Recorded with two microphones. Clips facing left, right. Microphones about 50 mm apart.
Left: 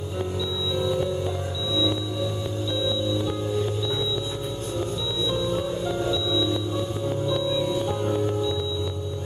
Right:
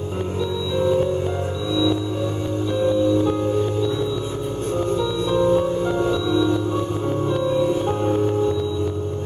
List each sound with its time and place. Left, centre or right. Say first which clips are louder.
2.7 s music: right 8 dB; right
4.9 s music: right 7 dB; right